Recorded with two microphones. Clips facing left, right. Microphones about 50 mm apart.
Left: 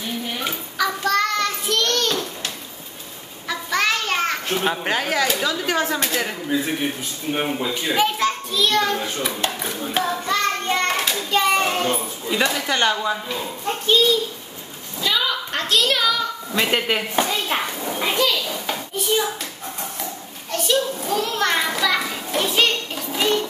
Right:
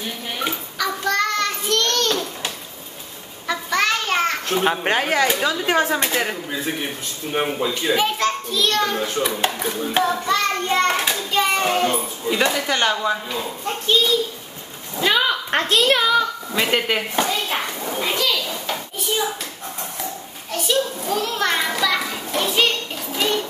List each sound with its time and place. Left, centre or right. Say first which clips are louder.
0.4 s child singing: even; centre
3.4 s a sound: right 1 dB; centre
4.6 s speech: right 4 dB; centre
7.3 s a child's voice: right 3 dB; centre
10.9 s hands: right 1 dB; right
11.3 s a sound: even; centre
12.5 s a child's voice: even; centre
15.0 s a sound: right 3 dB; right
15.7 s a child's voice: right 2 dB; right
16.5 s speech: even; centre
18.5 s a sound: left 1 dB; centre
20.5 s a child's voice: even; centre